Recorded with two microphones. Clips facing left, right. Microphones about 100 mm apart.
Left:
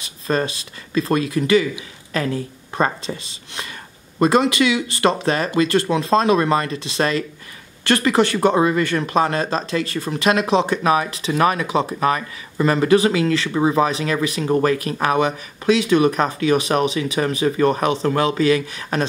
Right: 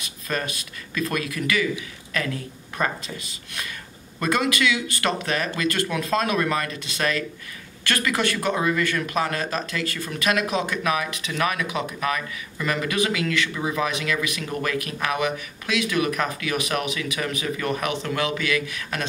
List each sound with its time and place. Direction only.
0.0 s speech: 30° left (ahead or behind)